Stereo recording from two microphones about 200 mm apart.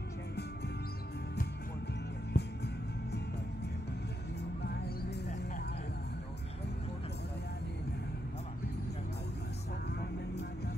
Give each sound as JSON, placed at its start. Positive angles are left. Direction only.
{"t": 2.3, "sound": "music", "side_deg": 55}
{"t": 4.6, "sound": "music", "side_deg": 55}